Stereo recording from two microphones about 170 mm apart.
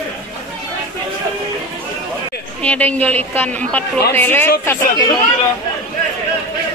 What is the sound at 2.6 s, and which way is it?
A man's voice, 10° left (ahead or behind).